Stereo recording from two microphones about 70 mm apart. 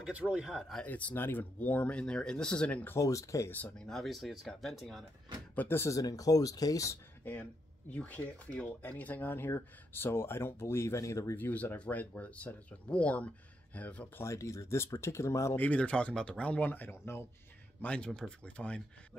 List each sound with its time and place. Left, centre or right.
0.0 s speech: centre
0.8 s speech: left
2.7 s speech: left
3.0 s speech: left
3.7 s speech: centre
5.6 s speech: left
5.9 s speech: left
7.9 s speech: left
11.3 s speech: left
14.1 s speech: left
15.5 s speech: left
17.8 s speech: centre